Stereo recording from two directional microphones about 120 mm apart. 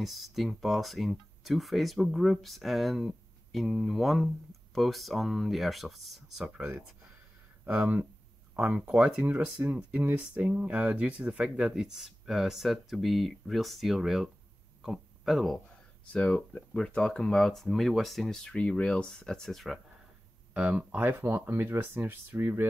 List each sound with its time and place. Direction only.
0.0 s speech: centre (ahead or behind)
20.5 s speech: 10° right (ahead or behind)